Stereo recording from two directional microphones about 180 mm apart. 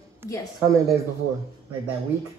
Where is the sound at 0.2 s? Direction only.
10° right (ahead or behind).